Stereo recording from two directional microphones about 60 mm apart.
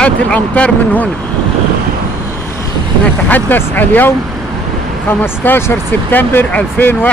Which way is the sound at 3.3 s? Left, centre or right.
Left.